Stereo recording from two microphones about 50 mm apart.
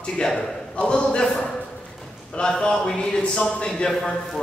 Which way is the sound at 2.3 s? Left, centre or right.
Centre.